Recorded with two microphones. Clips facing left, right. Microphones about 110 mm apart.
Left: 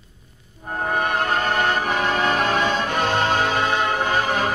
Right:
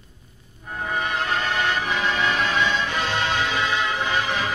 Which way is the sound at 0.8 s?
50° left (ahead or behind).